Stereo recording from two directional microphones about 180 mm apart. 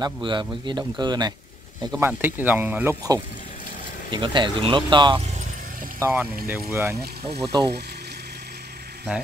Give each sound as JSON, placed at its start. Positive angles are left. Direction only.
{"t": 0.0, "sound": "a man's voice", "side_deg": -25}
{"t": 2.0, "sound": "speech", "side_deg": -10}
{"t": 4.1, "sound": "a man's voice", "side_deg": -25}
{"t": 5.9, "sound": "speech", "side_deg": -15}
{"t": 7.2, "sound": "speech", "side_deg": -35}